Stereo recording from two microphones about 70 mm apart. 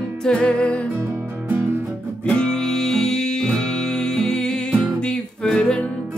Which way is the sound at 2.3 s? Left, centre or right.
Centre.